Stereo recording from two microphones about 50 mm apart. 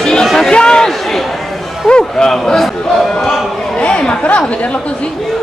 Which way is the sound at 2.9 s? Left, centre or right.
Centre.